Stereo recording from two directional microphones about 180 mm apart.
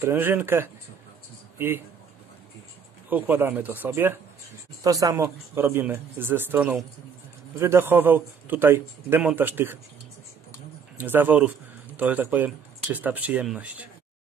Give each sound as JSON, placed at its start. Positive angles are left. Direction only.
{"t": 0.0, "sound": "a man's voice", "side_deg": -15}
{"t": 3.1, "sound": "a man's voice", "side_deg": -10}
{"t": 11.0, "sound": "a man's voice", "side_deg": -10}